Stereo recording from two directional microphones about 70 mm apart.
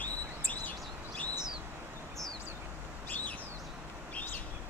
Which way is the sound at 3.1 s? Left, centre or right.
Left.